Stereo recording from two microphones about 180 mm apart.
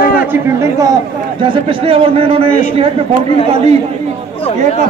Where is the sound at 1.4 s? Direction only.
30° right (ahead or behind).